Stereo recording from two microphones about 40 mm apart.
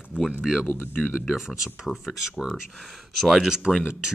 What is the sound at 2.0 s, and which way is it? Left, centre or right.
Speech, centre.